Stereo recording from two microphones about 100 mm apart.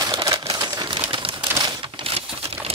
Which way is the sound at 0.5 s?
45° right (ahead or behind).